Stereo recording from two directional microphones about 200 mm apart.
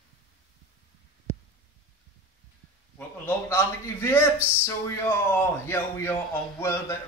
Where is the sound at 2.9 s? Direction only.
10° left (ahead or behind).